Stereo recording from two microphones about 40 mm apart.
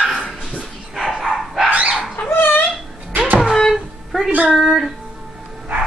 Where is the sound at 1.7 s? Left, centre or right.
Right.